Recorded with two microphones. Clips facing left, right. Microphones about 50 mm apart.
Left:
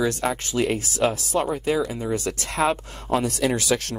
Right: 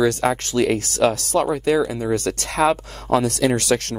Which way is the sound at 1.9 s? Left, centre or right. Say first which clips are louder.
Right 4 dB; right.